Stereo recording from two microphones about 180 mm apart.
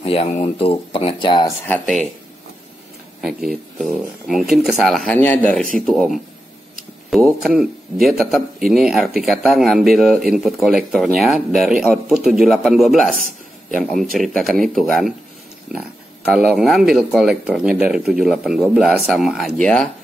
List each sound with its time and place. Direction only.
0.0 s speech: 35° left (ahead or behind)
3.2 s a man's voice: 5° right (ahead or behind)
14.1 s a man's voice: centre (ahead or behind)
16.3 s a man's voice: centre (ahead or behind)